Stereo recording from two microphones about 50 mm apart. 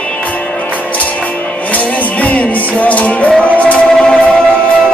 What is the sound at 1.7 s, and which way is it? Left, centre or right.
Music, left.